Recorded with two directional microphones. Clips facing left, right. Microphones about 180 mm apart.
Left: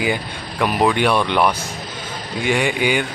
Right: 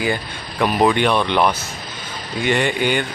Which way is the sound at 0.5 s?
5° left (ahead or behind).